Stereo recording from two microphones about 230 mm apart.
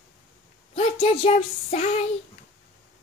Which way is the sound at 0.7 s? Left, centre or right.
Left.